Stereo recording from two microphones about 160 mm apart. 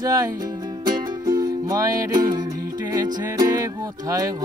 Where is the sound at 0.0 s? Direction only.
25° right (ahead or behind).